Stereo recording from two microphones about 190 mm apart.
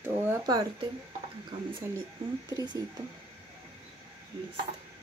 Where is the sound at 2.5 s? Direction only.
20° right (ahead or behind).